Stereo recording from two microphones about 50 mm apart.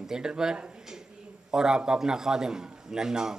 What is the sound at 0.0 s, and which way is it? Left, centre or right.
Speech, centre.